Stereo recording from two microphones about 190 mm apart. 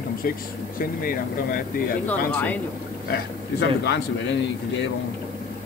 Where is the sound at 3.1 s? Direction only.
60° left (ahead or behind).